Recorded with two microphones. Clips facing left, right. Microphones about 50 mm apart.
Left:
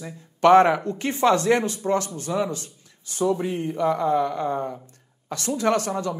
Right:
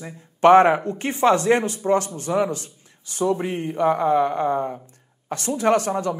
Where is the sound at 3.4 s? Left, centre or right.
Right.